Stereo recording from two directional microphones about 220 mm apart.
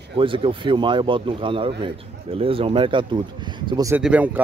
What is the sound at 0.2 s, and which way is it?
Speech, 25° right (ahead or behind).